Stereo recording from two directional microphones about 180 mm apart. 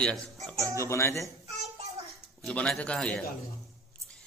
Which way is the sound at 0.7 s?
15° left (ahead or behind).